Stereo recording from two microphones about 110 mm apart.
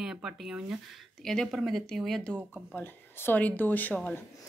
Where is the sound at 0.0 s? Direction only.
5° right (ahead or behind).